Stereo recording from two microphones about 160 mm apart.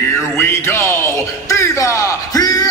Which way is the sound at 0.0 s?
15° left (ahead or behind).